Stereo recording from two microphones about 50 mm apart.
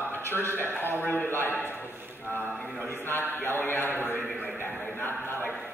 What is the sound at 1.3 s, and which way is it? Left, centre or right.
Speech, left.